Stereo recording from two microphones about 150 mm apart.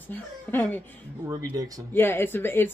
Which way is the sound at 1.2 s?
25° right (ahead or behind).